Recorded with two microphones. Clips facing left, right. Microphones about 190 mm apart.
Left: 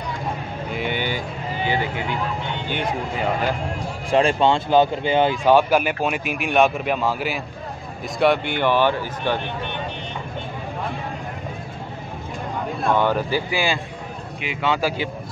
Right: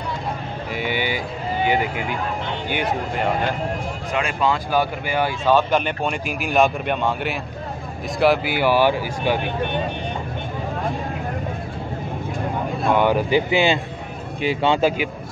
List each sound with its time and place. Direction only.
0.7 s speech: 5° right (ahead or behind)
2.7 s speech: 5° right (ahead or behind)
4.1 s speech: 30° left (ahead or behind); by 9.4 s 10° right (ahead or behind)
12.9 s speech: 15° right (ahead or behind)